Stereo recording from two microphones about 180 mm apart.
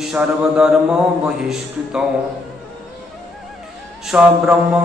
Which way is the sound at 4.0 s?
5° right (ahead or behind).